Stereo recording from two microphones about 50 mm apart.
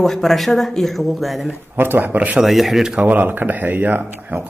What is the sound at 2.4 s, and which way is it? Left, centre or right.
Speech, centre.